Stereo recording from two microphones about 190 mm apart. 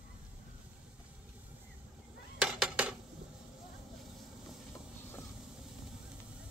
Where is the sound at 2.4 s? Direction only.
5° right (ahead or behind).